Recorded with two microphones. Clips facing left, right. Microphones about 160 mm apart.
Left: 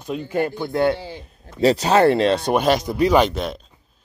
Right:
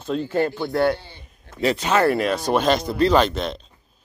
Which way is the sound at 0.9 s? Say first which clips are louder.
Left 10 dB; 90° left.